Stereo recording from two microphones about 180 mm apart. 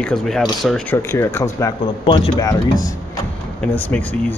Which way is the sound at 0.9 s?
15° left (ahead or behind).